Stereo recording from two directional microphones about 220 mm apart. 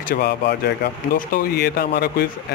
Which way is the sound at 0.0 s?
45° left (ahead or behind).